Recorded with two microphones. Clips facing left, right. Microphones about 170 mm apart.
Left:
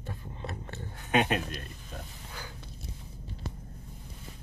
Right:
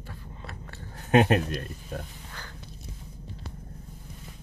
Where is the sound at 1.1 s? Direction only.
40° right (ahead or behind).